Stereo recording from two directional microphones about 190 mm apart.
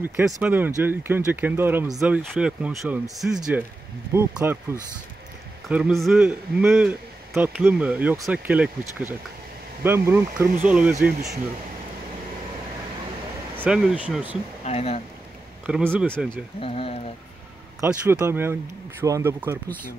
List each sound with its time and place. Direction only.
0.0 s a man's voice: 10° right (ahead or behind)
5.7 s a man's voice: 5° right (ahead or behind)
13.6 s a man's voice: 5° right (ahead or behind)
14.6 s speech: 35° left (ahead or behind)
15.6 s a man's voice: 10° right (ahead or behind)
16.1 s speech: 5° left (ahead or behind)
16.6 s speech: 30° left (ahead or behind)
17.8 s a man's voice: 5° right (ahead or behind)